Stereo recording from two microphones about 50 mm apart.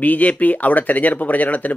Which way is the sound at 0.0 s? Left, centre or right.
Left.